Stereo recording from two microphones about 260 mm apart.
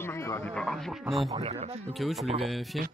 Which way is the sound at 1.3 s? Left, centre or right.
Right.